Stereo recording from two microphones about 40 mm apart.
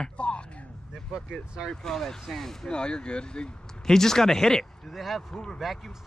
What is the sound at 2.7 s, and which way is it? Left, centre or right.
Speech, left.